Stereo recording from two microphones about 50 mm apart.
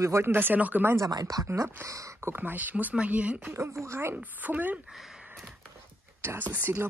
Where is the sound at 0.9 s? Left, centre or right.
Right.